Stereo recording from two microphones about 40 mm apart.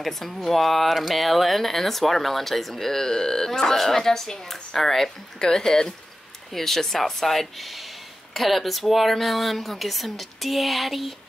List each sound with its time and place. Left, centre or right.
0.0 s speech: centre